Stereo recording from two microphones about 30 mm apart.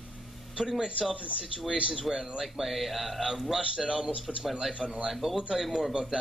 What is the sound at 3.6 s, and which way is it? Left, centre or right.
Speech, right.